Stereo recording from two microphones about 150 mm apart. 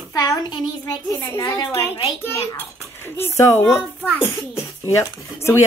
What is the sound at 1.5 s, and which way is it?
Speech, 30° left (ahead or behind).